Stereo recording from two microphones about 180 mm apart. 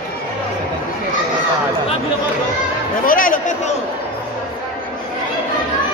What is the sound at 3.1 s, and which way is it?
Speech, 50° left (ahead or behind).